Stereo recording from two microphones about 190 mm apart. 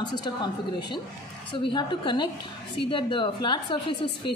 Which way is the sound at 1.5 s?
25° left (ahead or behind).